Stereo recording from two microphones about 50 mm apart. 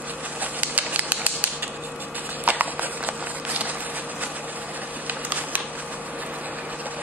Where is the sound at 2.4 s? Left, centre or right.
Right.